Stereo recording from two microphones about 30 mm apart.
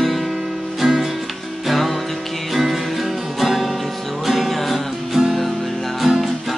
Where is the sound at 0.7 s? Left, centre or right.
Centre.